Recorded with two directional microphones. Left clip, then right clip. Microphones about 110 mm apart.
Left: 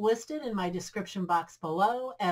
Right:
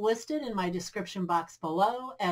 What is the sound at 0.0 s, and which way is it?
Speech, 30° right (ahead or behind).